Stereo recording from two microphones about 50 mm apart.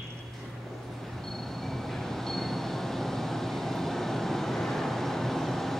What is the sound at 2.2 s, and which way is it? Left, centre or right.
Train, centre.